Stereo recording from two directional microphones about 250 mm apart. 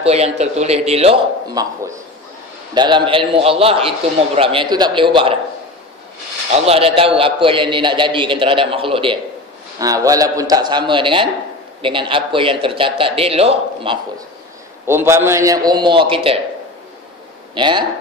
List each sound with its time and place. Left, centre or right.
0.0 s a man's voice: right
6.5 s a man's voice: right
14.9 s a man's voice: centre
17.6 s a man's voice: centre